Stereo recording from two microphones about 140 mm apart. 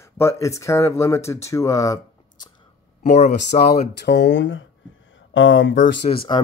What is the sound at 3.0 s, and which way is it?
Speech, 65° left (ahead or behind).